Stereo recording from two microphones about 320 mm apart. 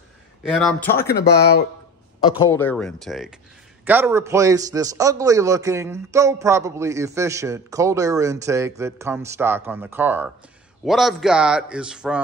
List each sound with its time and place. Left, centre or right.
0.5 s a man's voice: centre
1.1 s speech: left
2.3 s a man's voice: centre